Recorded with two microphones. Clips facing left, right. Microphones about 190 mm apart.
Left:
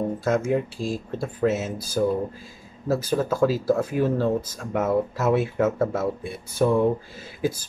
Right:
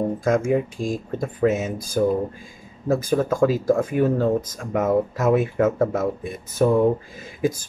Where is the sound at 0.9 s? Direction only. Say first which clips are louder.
Right 2 dB; 5° left (ahead or behind).